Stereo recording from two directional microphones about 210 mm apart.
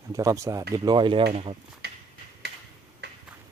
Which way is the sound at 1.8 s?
50° right (ahead or behind).